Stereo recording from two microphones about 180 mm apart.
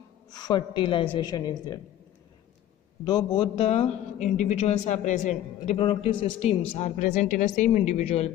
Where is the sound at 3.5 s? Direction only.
35° left (ahead or behind).